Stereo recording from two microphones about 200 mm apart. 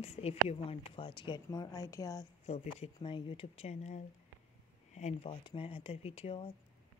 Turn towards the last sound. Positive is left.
turn(degrees=25)  # may be behind; listen again after turning